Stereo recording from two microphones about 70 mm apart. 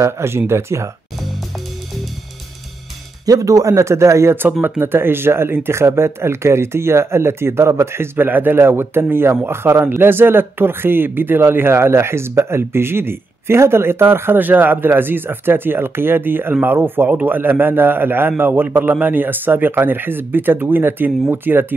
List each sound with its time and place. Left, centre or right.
0.0 s speech: right
3.3 s speech: right
4.4 s a man's voice: right